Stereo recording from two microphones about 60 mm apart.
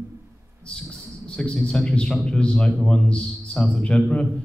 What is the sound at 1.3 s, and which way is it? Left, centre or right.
A man's voice, centre.